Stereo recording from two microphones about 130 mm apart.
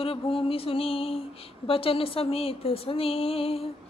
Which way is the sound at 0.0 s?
45° left (ahead or behind).